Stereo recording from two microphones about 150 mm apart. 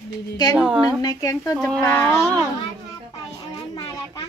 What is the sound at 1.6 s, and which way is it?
Speech, 5° left (ahead or behind).